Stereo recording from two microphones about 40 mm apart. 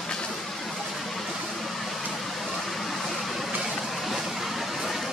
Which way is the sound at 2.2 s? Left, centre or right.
Centre.